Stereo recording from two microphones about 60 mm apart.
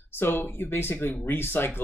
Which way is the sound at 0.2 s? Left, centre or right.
Left.